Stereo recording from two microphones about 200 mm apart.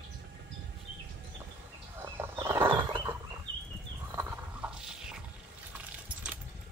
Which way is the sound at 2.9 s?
20° right (ahead or behind).